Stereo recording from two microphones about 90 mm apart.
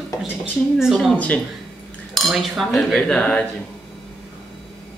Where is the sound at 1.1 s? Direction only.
15° left (ahead or behind).